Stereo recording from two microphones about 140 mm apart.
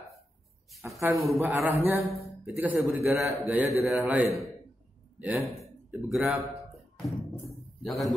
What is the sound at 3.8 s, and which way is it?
Speech, centre (ahead or behind).